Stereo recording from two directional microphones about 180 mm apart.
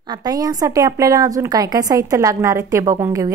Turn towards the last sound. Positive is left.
turn(degrees=-15)  # may be behind; listen again after turning